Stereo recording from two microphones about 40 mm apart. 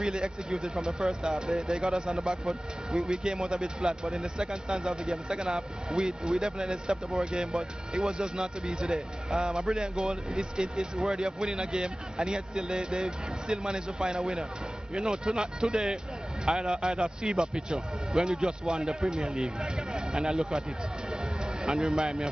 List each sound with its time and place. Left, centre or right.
0.0 s speech: right
21.6 s speech: centre